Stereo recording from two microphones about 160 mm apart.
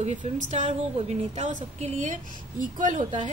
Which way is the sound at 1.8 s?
50° right (ahead or behind).